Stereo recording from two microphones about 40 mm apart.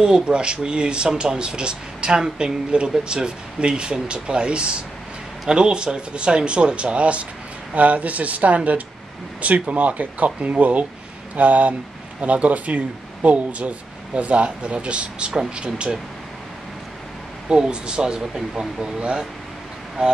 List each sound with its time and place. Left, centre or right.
0.0 s speech: right
17.5 s speech: right